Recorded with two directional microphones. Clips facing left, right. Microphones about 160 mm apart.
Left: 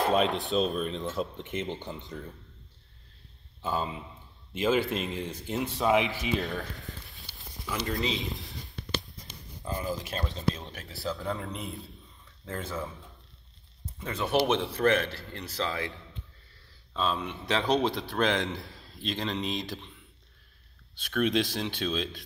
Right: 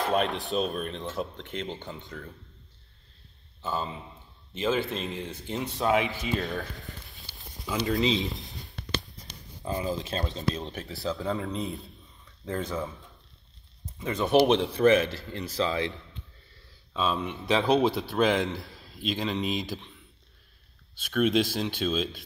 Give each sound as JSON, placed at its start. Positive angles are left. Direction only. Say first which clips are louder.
{"t": 0.1, "sound": "speech", "louder": "left 1 dB", "side_deg": 0}
{"t": 4.6, "sound": "speech", "louder": "left 1 dB", "side_deg": 10}
{"t": 7.6, "sound": "speech", "louder": "right 5 dB", "side_deg": -20}
{"t": 9.7, "sound": "a man's voice", "louder": "right 3 dB", "side_deg": -15}
{"t": 12.4, "sound": "speech", "louder": "right 4 dB", "side_deg": -20}
{"t": 13.9, "sound": "a man's voice", "louder": "right 5 dB", "side_deg": -10}
{"t": 16.9, "sound": "a man's voice", "louder": "right 2 dB", "side_deg": -5}
{"t": 20.9, "sound": "speech", "louder": "right 3 dB", "side_deg": -5}